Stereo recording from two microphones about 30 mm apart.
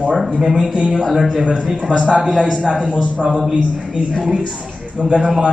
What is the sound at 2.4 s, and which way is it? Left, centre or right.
Speech, right.